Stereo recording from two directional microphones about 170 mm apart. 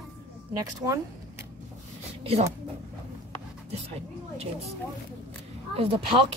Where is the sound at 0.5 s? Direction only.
20° right (ahead or behind).